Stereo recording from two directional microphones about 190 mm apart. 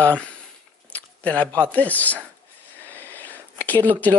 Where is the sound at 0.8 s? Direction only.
10° left (ahead or behind).